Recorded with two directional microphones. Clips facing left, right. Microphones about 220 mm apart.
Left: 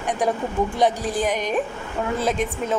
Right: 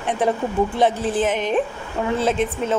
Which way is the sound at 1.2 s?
25° right (ahead or behind).